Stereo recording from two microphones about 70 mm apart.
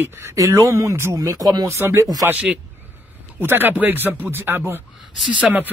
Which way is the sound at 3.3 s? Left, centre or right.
Right.